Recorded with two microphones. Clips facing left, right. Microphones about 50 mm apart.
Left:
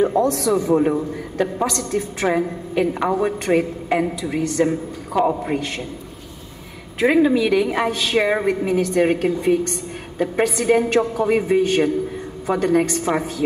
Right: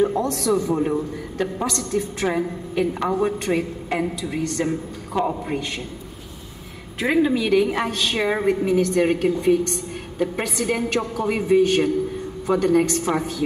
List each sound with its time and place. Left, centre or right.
0.0 s speech: left
0.3 s a woman's voice: centre
0.6 s a man's voice: left
1.7 s a woman's voice: left; by 5.6 s centre
7.0 s a woman's voice: centre